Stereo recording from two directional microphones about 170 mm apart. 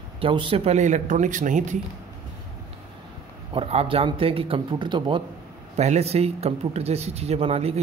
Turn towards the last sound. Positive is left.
turn(degrees=-35)  # may be behind; listen again after turning